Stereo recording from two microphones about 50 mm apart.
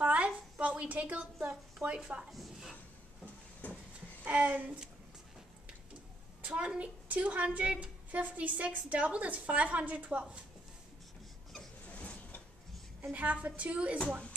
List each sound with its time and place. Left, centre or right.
0.0 s a sound: right
1.5 s a woman's voice: right
2.3 s speech: centre
3.6 s a sound: left
4.2 s speech: right
6.4 s a woman's voice: right
11.9 s sliding door: left
13.1 s a woman's voice: right